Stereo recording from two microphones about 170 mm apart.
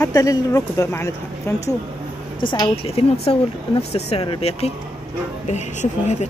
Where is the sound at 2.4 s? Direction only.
30° left (ahead or behind).